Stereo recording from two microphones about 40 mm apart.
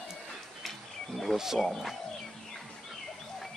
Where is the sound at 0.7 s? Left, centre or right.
Centre.